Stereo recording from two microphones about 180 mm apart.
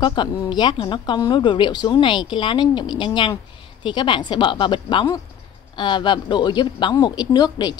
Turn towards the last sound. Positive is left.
turn(degrees=20)  # may be behind; listen again after turning